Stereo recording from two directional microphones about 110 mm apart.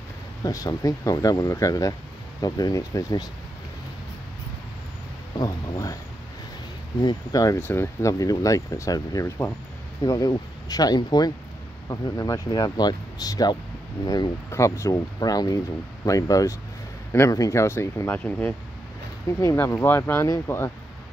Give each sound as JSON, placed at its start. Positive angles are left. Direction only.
{"t": 0.4, "sound": "speech", "side_deg": 30}
{"t": 5.4, "sound": "speech", "side_deg": 35}
{"t": 7.0, "sound": "speech", "side_deg": 40}
{"t": 7.6, "sound": "speech", "side_deg": 25}
{"t": 14.5, "sound": "speech", "side_deg": 25}